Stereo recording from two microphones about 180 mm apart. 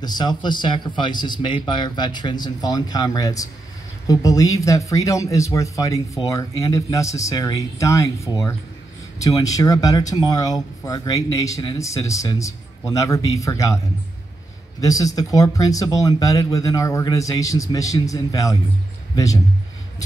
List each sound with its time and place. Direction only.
0.0 s speech: 25° left (ahead or behind)
14.8 s speech: 20° left (ahead or behind)